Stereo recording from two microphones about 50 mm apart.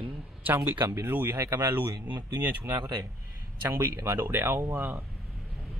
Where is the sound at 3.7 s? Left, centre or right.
Right.